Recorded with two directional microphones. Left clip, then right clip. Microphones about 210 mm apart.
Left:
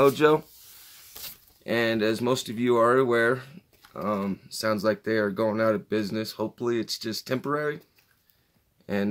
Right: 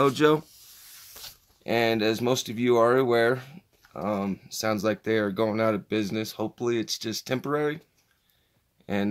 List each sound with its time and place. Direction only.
0.0 s speech: 35° right (ahead or behind)
1.6 s speech: 35° right (ahead or behind)